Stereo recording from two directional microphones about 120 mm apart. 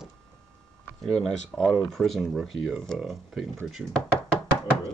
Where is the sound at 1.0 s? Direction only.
5° left (ahead or behind).